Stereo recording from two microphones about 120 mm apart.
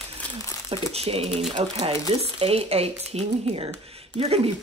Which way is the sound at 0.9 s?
60° right (ahead or behind).